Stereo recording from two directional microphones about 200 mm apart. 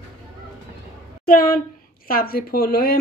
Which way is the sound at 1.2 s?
45° left (ahead or behind).